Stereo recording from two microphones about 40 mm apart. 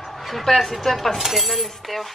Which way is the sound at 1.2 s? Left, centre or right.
Centre.